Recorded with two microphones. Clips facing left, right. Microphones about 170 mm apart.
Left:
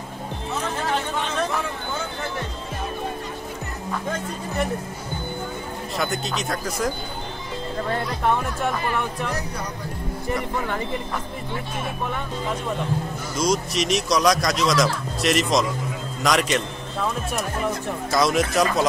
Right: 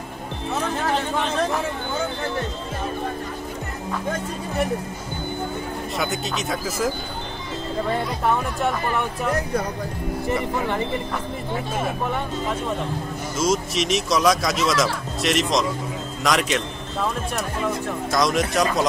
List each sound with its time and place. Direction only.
5.9 s speech: centre (ahead or behind)
9.3 s speech: 55° right (ahead or behind)
13.4 s a man's voice: centre (ahead or behind)
18.1 s speech: centre (ahead or behind)